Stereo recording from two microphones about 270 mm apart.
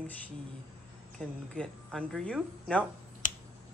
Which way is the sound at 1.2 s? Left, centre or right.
Centre.